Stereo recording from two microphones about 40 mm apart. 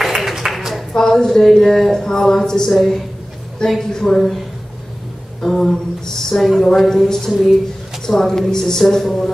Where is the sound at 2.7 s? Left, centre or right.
Centre.